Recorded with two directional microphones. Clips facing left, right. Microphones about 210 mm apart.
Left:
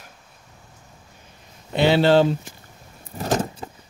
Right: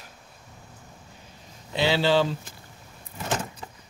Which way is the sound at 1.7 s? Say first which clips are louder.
Left 6 dB; 55° left (ahead or behind).